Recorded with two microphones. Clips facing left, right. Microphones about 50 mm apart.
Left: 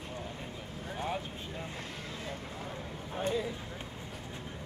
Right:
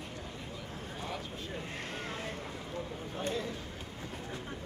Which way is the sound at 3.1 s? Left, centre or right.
Centre.